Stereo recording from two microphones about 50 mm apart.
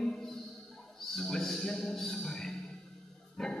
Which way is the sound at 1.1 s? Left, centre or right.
Centre.